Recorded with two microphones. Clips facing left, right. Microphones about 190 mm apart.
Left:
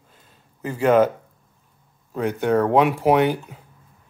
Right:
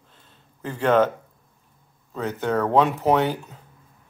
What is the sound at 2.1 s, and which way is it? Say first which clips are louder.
Speech: left 4 dB; 15° left (ahead or behind).